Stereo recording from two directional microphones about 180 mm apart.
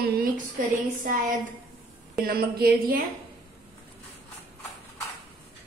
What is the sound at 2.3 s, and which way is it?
Speech, 60° right (ahead or behind).